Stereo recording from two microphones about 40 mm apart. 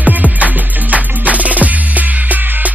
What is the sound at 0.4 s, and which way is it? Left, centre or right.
Music, right.